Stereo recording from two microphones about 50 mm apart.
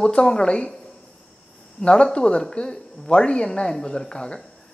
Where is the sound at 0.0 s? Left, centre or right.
Centre.